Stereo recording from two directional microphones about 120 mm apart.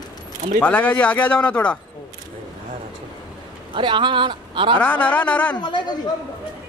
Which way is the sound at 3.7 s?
40° right (ahead or behind).